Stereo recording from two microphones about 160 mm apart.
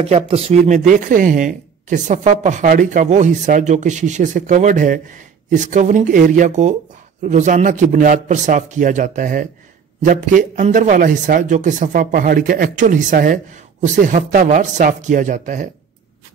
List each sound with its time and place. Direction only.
0.0 s speech: 40° right (ahead or behind)